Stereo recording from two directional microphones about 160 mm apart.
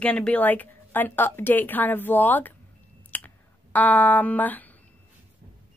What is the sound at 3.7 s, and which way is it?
Speech, 10° left (ahead or behind).